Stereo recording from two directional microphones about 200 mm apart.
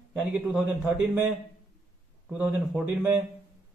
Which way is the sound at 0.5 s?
10° right (ahead or behind).